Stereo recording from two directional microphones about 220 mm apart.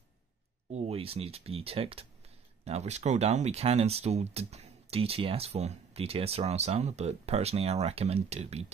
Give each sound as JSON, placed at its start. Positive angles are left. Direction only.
{"t": 0.7, "sound": "speech", "side_deg": -30}